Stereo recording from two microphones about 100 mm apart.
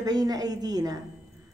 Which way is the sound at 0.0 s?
40° right (ahead or behind).